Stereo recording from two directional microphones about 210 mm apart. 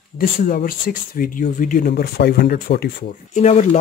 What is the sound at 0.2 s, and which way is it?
Speech, 45° left (ahead or behind).